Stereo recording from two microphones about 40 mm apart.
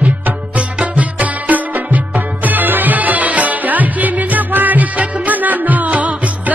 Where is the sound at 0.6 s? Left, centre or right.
Right.